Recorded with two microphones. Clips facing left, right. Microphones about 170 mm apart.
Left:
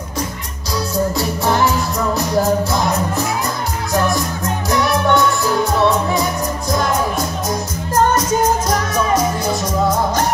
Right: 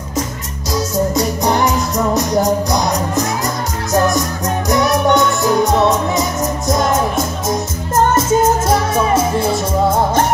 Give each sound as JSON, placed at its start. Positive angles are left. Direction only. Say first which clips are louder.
{"t": 0.7, "sound": "music", "louder": "right 2 dB", "side_deg": -20}
{"t": 4.6, "sound": "music", "louder": "right 2 dB", "side_deg": -20}
{"t": 8.1, "sound": "music", "louder": "right 3 dB", "side_deg": -25}